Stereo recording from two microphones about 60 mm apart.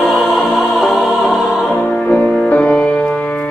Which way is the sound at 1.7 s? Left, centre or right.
Centre.